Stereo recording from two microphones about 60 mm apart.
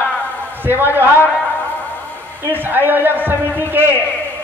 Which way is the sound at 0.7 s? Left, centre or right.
Right.